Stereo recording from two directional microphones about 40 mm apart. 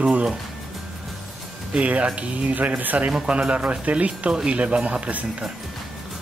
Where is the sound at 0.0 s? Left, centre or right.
Right.